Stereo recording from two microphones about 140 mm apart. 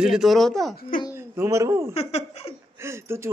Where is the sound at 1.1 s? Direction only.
20° right (ahead or behind).